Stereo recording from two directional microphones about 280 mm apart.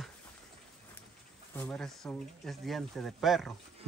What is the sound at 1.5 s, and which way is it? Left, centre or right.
Speech, centre.